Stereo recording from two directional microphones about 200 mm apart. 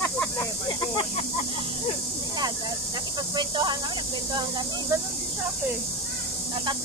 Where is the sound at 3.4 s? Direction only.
20° right (ahead or behind).